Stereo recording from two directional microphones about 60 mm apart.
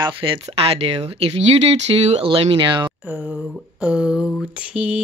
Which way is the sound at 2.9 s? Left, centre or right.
Right.